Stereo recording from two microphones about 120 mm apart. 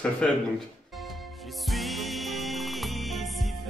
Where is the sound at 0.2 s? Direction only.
10° left (ahead or behind).